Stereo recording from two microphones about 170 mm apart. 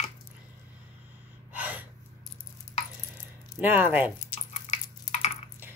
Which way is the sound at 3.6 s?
10° right (ahead or behind).